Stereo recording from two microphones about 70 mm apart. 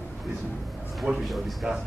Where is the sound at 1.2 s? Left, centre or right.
Centre.